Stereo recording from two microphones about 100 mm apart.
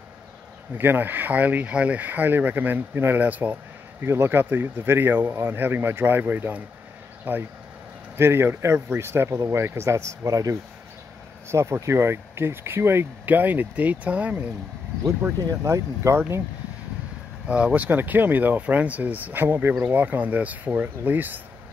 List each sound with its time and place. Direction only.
0.7 s speech: 20° right (ahead or behind)
11.5 s speech: 30° right (ahead or behind)
15.6 s speech: 30° right (ahead or behind)
17.5 s speech: 10° right (ahead or behind)